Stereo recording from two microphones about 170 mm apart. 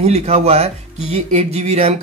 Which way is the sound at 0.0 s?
35° right (ahead or behind).